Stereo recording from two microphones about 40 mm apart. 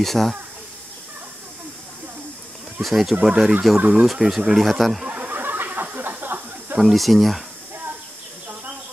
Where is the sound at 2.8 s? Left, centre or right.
Centre.